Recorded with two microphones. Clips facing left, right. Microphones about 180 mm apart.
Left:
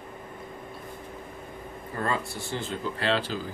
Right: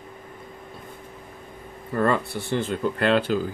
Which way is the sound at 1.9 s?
60° right (ahead or behind).